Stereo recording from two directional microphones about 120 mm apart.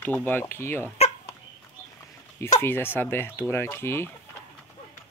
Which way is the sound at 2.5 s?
20° left (ahead or behind).